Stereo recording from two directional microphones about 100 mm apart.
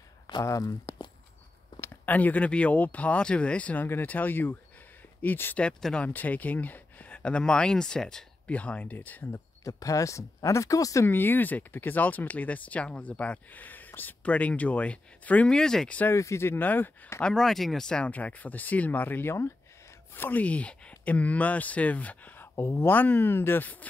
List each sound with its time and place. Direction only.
0.3 s speech: 40° left (ahead or behind)
1.8 s speech: 15° left (ahead or behind)
9.3 s speech: 35° left (ahead or behind)
11.1 s speech: 20° left (ahead or behind)
16.0 s speech: 25° left (ahead or behind)
17.2 s speech: 5° left (ahead or behind)